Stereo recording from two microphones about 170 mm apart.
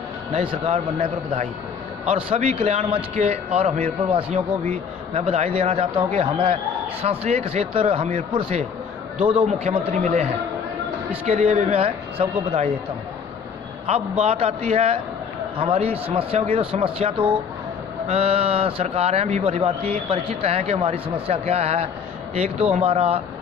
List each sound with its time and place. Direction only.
0.3 s a man's voice: 35° right (ahead or behind)
2.0 s a man's voice: 35° right (ahead or behind)
14.2 s a man's voice: 40° right (ahead or behind)